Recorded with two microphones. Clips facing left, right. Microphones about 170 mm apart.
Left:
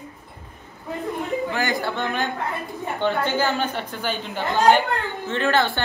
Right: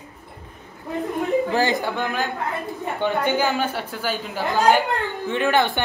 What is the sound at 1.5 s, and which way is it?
Speech, 30° right (ahead or behind).